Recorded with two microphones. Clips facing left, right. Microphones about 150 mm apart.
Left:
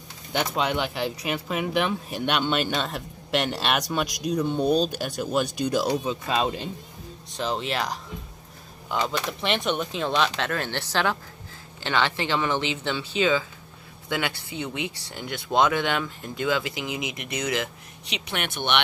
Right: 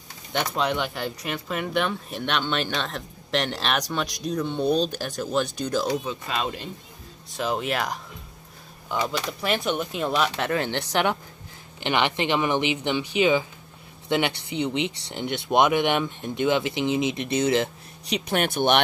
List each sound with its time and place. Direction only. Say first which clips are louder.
0.3 s speech: even; 5° left (ahead or behind)
6.0 s speech: left 4 dB; 30° left (ahead or behind)
7.3 s speech: right 1 dB; 5° right (ahead or behind)
8.9 s speech: even; 5° right (ahead or behind)
10.3 s speech: right 3 dB; 20° right (ahead or behind)
18.0 s speech: right 7 dB; 40° right (ahead or behind)